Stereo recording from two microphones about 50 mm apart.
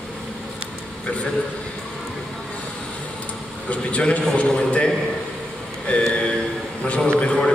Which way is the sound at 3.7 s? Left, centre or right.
Left.